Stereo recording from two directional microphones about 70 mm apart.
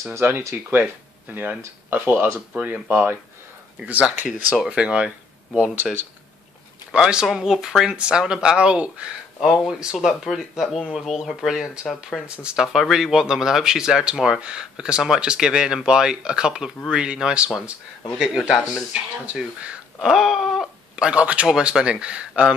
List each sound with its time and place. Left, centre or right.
0.2 s speech: right; by 9.0 s centre
9.4 s speech: centre
12.4 s speech: centre
12.6 s speech: centre
18.1 s a man's voice: centre
19.2 s speech: centre
21.0 s speech: centre